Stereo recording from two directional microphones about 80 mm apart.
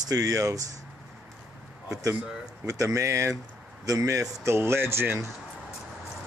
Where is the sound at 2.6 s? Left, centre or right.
Right.